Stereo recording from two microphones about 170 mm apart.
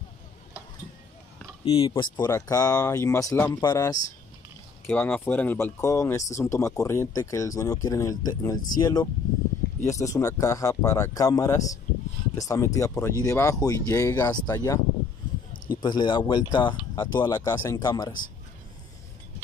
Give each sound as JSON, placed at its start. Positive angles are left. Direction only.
{"t": 1.6, "sound": "speech", "side_deg": 30}
{"t": 4.8, "sound": "speech", "side_deg": 10}